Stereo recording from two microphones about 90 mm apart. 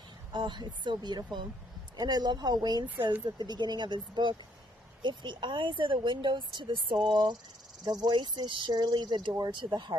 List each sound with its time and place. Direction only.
0.3 s speech: 55° right (ahead or behind)
9.6 s speech: 45° right (ahead or behind)